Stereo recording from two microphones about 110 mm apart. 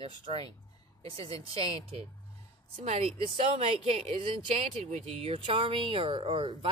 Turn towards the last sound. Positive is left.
turn(degrees=-50)  # may be behind; listen again after turning